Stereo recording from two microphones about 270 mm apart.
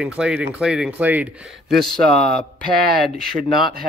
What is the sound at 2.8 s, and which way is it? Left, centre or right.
Speech, right.